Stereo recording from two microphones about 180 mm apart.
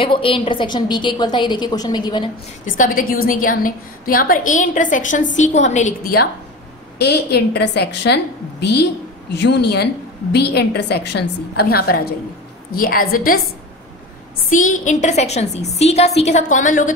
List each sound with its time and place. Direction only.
0.0 s a woman's voice: 30° left (ahead or behind)
2.8 s a woman's voice: 50° left (ahead or behind)
7.0 s a woman's voice: 65° left (ahead or behind)
14.5 s a woman's voice: 45° left (ahead or behind)